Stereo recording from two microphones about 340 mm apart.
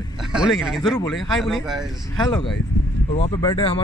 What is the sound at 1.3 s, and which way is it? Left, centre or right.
Speech, centre.